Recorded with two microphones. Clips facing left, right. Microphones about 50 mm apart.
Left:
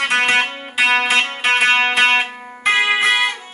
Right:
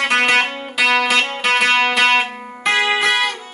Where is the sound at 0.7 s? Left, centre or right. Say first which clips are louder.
Even; left.